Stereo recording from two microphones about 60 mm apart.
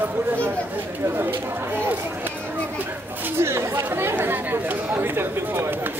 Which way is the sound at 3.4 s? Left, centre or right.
Right.